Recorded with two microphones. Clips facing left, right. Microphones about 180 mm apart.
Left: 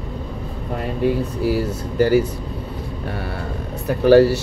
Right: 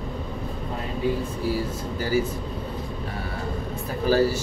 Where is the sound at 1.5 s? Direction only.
65° left (ahead or behind).